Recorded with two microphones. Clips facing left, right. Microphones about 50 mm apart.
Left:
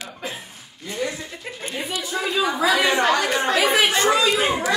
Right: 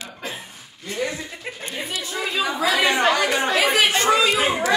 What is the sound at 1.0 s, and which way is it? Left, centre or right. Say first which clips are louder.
Speech: right 1 dB; right.